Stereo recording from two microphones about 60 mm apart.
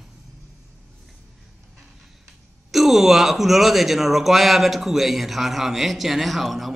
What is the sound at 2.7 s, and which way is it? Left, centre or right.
Speech, centre.